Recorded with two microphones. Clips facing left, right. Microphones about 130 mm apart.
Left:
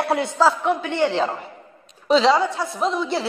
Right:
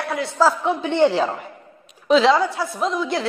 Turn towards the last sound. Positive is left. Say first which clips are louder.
# even
turn(degrees=0)  # may be behind; listen again after turning